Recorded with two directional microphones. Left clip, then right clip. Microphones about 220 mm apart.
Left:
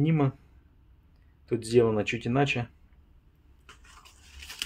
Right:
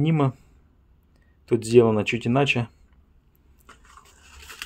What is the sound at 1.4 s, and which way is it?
Speech, 25° right (ahead or behind).